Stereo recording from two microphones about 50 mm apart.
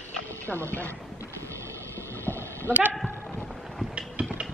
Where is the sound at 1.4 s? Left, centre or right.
Right.